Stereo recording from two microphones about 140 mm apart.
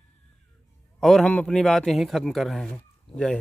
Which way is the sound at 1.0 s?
5° left (ahead or behind).